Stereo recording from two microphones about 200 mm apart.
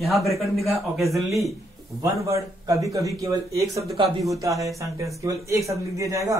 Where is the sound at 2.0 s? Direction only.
15° right (ahead or behind).